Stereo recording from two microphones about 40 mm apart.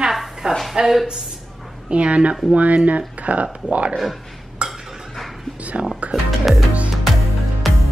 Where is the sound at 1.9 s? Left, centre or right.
Right.